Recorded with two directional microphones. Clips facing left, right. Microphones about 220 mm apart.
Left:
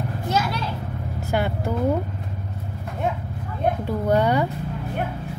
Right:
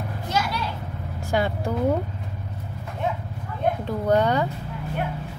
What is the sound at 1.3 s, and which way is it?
Vehicle, 5° left (ahead or behind).